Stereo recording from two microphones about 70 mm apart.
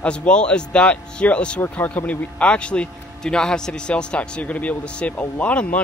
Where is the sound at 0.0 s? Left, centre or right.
Centre.